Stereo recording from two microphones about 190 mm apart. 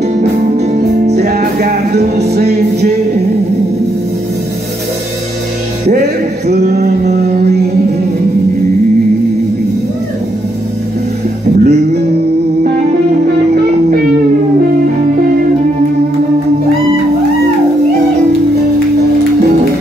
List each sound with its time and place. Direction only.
0.2 s music: 35° right (ahead or behind)
1.1 s music: 55° right (ahead or behind)
2.0 s music: 35° right (ahead or behind)
2.3 s music: 60° right (ahead or behind)
6.4 s a sound: 60° right (ahead or behind)
11.6 s music: 60° right (ahead or behind)